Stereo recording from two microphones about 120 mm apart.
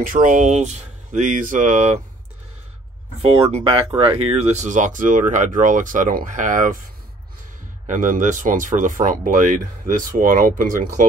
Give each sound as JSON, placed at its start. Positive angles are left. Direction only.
{"t": 0.2, "sound": "speech", "side_deg": -90}
{"t": 3.2, "sound": "speech", "side_deg": -55}
{"t": 7.8, "sound": "speech", "side_deg": -90}